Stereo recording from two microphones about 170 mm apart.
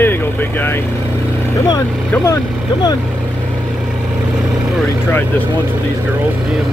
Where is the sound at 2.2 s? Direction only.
20° left (ahead or behind).